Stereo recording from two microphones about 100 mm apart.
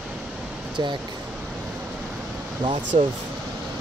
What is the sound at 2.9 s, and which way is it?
Speech, 90° right.